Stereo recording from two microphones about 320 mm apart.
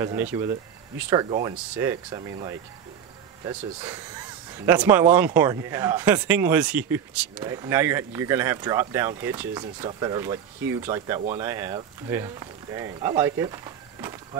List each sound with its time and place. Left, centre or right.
0.0 s speech: centre